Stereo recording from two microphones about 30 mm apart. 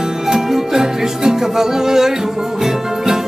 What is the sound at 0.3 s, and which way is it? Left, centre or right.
Music, centre.